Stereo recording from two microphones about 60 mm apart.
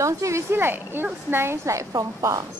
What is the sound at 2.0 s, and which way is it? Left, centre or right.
Speech, right.